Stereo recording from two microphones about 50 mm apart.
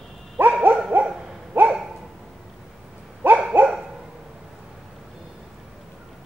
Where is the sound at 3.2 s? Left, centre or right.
Right.